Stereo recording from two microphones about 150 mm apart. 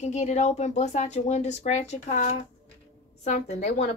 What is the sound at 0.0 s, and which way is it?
Speech, 50° left (ahead or behind).